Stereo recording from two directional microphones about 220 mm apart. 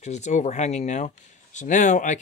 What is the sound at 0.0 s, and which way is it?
Speech, 30° left (ahead or behind).